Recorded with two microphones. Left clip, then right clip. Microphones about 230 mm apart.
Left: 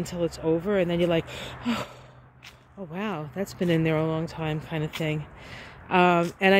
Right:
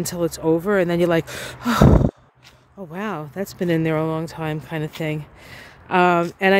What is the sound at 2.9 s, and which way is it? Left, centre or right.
Speech, right.